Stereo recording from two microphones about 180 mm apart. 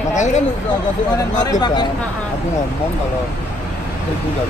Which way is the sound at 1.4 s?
25° left (ahead or behind).